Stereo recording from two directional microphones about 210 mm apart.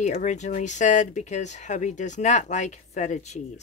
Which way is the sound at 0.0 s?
35° left (ahead or behind).